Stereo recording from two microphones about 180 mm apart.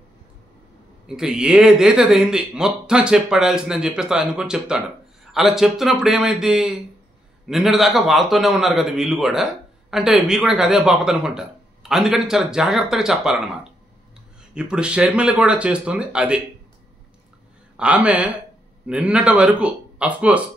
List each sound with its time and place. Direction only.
1.0 s a man's voice: 5° right (ahead or behind)
14.5 s a man's voice: 5° right (ahead or behind)
17.7 s speech: 5° right (ahead or behind)